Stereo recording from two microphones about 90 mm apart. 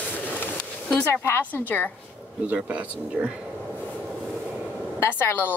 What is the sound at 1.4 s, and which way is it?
Speech, 20° left (ahead or behind).